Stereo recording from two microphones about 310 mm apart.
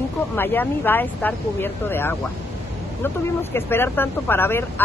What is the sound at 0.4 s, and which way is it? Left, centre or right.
Speech, centre.